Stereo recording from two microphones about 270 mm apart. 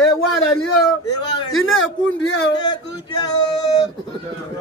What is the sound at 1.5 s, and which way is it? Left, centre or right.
Speech, left.